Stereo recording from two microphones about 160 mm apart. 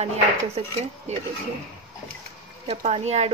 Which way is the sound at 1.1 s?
45° right (ahead or behind).